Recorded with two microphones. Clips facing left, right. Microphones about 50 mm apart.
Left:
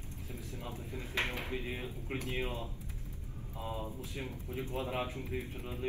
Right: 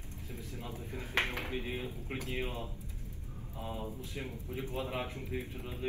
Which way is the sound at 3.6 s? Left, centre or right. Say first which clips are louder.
Even; left.